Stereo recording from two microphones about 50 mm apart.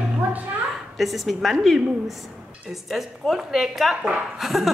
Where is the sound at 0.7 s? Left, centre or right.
Centre.